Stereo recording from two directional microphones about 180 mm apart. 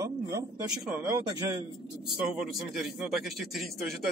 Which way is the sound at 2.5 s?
Centre (ahead or behind).